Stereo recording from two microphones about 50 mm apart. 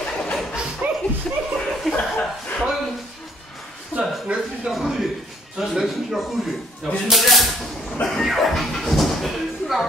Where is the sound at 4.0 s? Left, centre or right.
Right.